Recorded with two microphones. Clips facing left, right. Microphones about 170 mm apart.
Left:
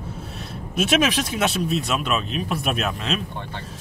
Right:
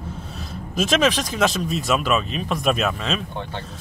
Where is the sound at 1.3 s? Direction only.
Centre (ahead or behind).